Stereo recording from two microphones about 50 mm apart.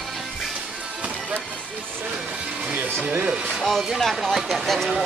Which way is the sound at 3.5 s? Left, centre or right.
Centre.